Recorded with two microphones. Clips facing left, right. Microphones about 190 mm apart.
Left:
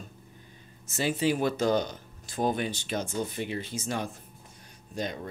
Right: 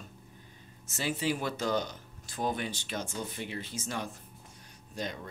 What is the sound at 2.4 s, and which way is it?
Speech, 20° left (ahead or behind).